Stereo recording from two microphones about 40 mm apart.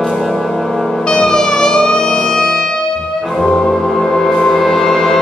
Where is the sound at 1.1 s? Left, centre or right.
Centre.